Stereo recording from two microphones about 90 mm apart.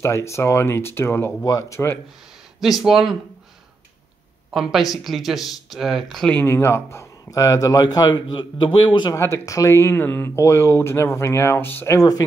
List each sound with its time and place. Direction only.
0.0 s speech: 30° left (ahead or behind)
1.4 s a man's voice: 40° left (ahead or behind)
2.6 s speech: 5° right (ahead or behind)
4.6 s speech: 5° right (ahead or behind)
6.4 s a man's voice: 30° left (ahead or behind); by 9.1 s 60° left (ahead or behind)
9.1 s speech: 35° left (ahead or behind)
12.0 s speech: 45° left (ahead or behind)